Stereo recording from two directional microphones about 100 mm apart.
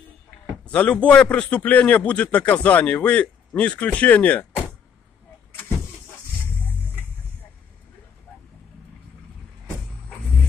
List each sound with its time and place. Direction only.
0.7 s a man's voice: 15° left (ahead or behind)